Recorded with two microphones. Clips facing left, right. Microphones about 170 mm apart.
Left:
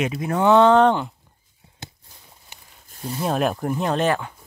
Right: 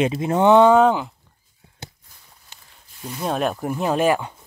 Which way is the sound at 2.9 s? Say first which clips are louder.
Left 3 dB; 35° left (ahead or behind).